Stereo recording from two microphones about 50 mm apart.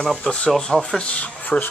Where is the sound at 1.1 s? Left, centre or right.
Left.